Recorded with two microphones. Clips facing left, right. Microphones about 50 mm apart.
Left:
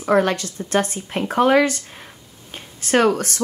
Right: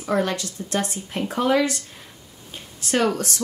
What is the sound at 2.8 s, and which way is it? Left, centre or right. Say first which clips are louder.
Speech: left 5 dB; left.